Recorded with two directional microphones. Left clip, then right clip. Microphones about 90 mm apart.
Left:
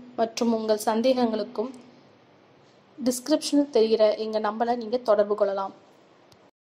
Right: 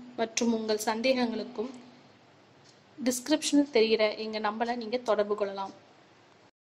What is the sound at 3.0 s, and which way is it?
A woman's voice, 20° left (ahead or behind).